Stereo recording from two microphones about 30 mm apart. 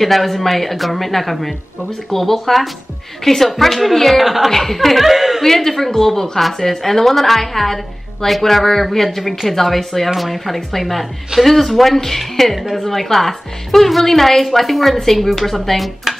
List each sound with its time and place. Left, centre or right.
0.0 s a woman's voice: centre
4.2 s a woman's voice: centre
4.5 s speech: centre
5.4 s a woman's voice: centre